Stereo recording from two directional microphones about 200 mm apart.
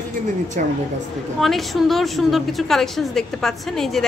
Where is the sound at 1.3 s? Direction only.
Centre (ahead or behind).